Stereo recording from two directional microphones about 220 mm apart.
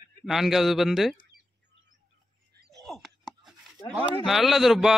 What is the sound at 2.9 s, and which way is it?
Chopping, centre (ahead or behind).